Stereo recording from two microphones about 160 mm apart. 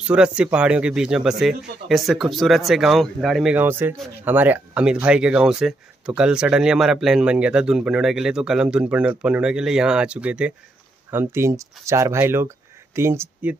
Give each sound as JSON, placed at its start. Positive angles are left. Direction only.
{"t": 0.0, "sound": "speech", "side_deg": -5}
{"t": 3.5, "sound": "speech", "side_deg": -15}